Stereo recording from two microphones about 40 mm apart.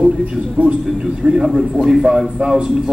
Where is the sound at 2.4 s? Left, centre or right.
Right.